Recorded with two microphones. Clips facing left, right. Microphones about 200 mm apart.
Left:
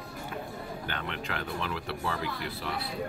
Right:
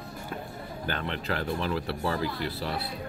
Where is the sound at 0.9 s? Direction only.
35° right (ahead or behind).